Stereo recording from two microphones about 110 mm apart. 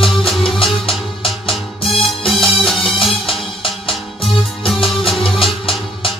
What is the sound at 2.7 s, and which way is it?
Music, 55° left (ahead or behind).